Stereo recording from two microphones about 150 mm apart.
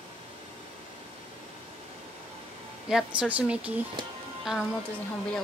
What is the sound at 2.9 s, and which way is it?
Speech, 5° right (ahead or behind).